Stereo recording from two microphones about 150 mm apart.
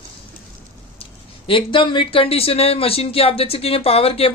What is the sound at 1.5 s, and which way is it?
Speech, 35° left (ahead or behind).